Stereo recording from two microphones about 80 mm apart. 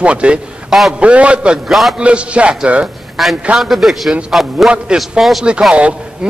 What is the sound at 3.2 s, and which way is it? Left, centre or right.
A man's voice, centre.